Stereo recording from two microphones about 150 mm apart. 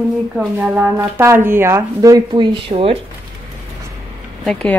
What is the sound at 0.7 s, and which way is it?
A woman's voice, 15° right (ahead or behind).